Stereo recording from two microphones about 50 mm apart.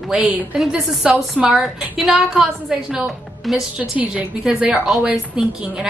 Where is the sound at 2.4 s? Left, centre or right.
Centre.